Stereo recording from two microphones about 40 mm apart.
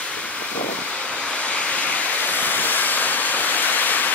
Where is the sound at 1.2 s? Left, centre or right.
Left.